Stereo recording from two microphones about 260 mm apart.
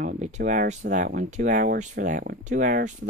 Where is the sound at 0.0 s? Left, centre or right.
Right.